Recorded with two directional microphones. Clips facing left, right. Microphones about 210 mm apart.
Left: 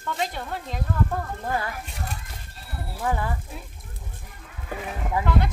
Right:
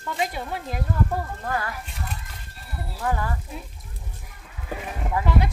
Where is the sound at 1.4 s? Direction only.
15° left (ahead or behind).